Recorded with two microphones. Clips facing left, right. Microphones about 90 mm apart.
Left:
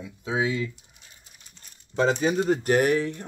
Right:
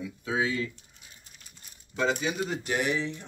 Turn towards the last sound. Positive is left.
turn(degrees=50)  # may be behind; listen again after turning